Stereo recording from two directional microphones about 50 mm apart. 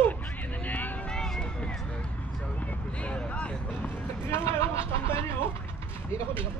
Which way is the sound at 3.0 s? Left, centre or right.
Left.